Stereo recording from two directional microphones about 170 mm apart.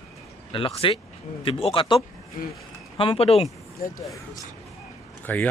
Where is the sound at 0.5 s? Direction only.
30° left (ahead or behind).